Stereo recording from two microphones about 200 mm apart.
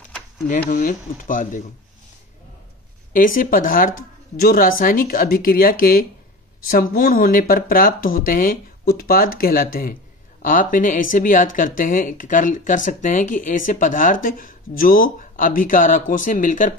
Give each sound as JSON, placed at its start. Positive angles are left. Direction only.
{"t": 0.7, "sound": "speech", "side_deg": 40}
{"t": 3.1, "sound": "speech", "side_deg": 40}